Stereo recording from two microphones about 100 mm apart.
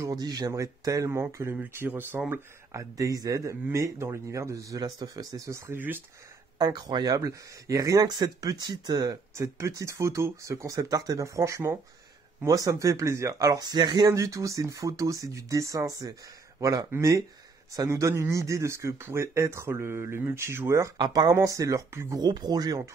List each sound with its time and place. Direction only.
0.0 s speech: 40° right (ahead or behind)
1.2 s speech: 20° right (ahead or behind)
2.7 s speech: 35° right (ahead or behind)
6.6 s speech: 45° right (ahead or behind); by 20.9 s 30° right (ahead or behind)
21.0 s speech: 40° right (ahead or behind)
22.2 s speech: 45° right (ahead or behind)